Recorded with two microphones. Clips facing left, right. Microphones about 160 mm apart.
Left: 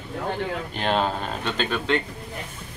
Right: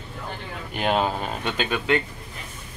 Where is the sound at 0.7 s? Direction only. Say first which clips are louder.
Right 2 dB; 10° right (ahead or behind).